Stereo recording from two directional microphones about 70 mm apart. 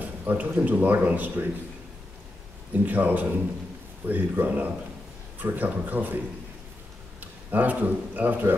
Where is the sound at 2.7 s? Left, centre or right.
Right.